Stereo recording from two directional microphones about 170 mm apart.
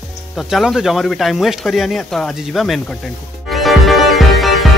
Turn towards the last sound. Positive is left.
turn(degrees=0)  # may be behind; listen again after turning